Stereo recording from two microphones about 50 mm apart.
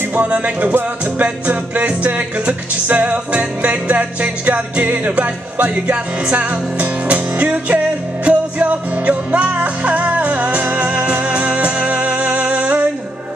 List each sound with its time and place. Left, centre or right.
0.1 s music: right